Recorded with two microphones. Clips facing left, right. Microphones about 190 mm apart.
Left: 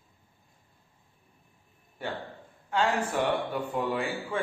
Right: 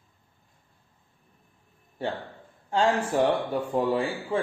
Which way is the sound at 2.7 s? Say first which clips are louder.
Right 3 dB; 35° right (ahead or behind).